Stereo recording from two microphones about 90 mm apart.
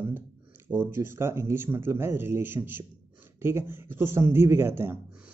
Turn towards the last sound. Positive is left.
turn(degrees=-25)  # may be behind; listen again after turning